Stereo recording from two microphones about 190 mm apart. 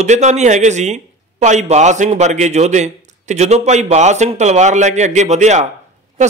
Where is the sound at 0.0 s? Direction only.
40° right (ahead or behind).